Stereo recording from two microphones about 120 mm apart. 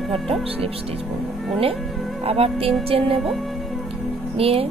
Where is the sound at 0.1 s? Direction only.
50° right (ahead or behind).